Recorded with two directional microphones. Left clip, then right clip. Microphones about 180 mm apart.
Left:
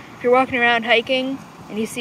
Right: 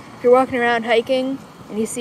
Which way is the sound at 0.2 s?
10° right (ahead or behind).